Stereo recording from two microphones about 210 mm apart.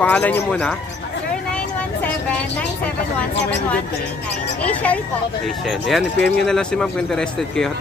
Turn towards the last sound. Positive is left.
turn(degrees=5)  # may be behind; listen again after turning